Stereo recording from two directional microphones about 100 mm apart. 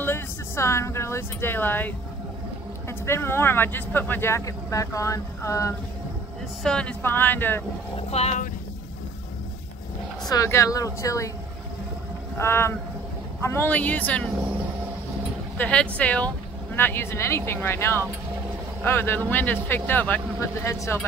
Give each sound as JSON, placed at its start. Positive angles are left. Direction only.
{"t": 0.0, "sound": "speech", "side_deg": 25}
{"t": 3.1, "sound": "speech", "side_deg": 25}
{"t": 6.6, "sound": "speech", "side_deg": 10}
{"t": 7.0, "sound": "speech", "side_deg": 20}
{"t": 8.1, "sound": "speech", "side_deg": 90}
{"t": 10.3, "sound": "speech", "side_deg": 30}
{"t": 12.4, "sound": "speech", "side_deg": 25}
{"t": 15.5, "sound": "speech", "side_deg": 15}
{"t": 20.3, "sound": "speech", "side_deg": 30}